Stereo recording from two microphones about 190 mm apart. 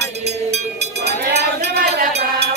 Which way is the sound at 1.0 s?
60° right (ahead or behind).